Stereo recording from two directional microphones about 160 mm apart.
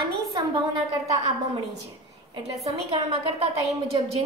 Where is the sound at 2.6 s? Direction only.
40° right (ahead or behind).